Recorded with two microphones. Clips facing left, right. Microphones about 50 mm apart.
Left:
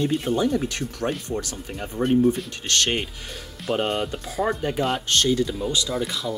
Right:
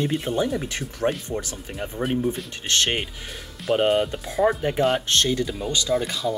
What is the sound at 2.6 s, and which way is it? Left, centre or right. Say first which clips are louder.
Speech: right 1 dB; right.